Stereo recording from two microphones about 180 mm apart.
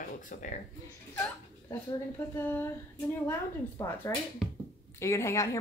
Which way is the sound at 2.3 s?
10° left (ahead or behind).